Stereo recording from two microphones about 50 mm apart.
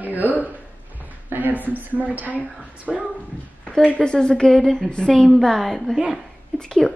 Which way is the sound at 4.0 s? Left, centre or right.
Centre.